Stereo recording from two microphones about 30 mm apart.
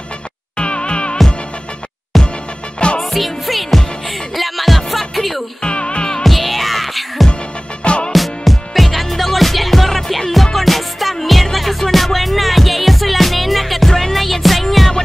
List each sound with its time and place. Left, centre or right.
0.6 s music: left
2.1 s music: centre
5.7 s music: left
6.2 s music: centre
7.8 s music: left
8.1 s music: centre